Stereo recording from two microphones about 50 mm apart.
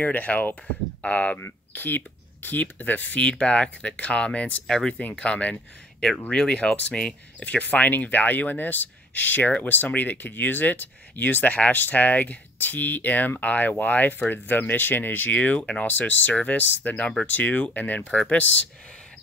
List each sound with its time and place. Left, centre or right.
0.0 s speech: left
1.7 s speech: left
4.6 s speech: centre
7.4 s speech: left
15.3 s speech: left
18.1 s speech: centre